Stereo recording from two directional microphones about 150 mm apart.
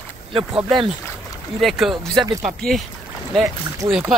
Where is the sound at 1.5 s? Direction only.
Centre (ahead or behind).